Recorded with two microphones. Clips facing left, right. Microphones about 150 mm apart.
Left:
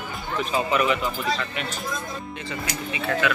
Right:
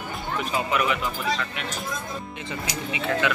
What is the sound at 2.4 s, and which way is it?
Speech, 20° right (ahead or behind).